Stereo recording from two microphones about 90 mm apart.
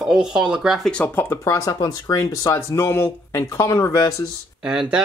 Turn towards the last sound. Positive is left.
turn(degrees=-10)  # may be behind; listen again after turning